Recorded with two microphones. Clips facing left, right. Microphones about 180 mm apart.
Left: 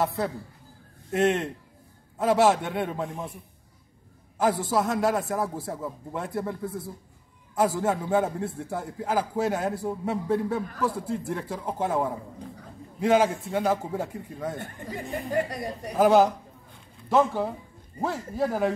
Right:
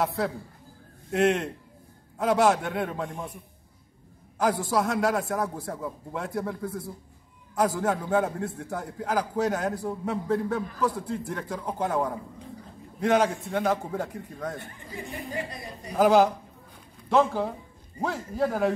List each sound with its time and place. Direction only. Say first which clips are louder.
0.0 s a man's voice: even; centre (ahead or behind)
15.2 s a woman's voice: left 9 dB; 60° left (ahead or behind)
15.9 s a man's voice: even; centre (ahead or behind)